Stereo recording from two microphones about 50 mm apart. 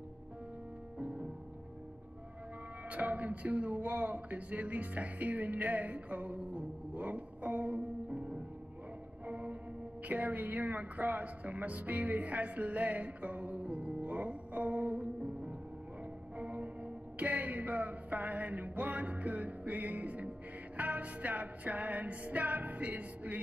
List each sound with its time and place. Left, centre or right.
0.9 s music: centre
2.9 s speech: right
9.2 s music: right
10.0 s speech: right